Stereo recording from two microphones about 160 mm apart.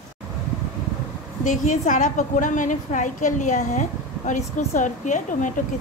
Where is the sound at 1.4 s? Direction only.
50° left (ahead or behind).